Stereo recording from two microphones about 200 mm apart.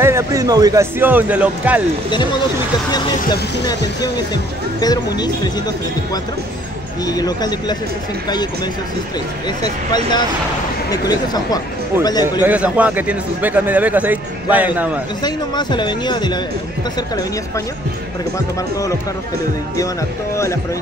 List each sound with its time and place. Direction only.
0.0 s a man's voice: 15° right (ahead or behind)
2.9 s speech: 20° left (ahead or behind)
7.1 s speech: 20° left (ahead or behind)
10.9 s speech: 20° left (ahead or behind)
12.4 s a man's voice: 5° right (ahead or behind)
15.2 s speech: 20° left (ahead or behind)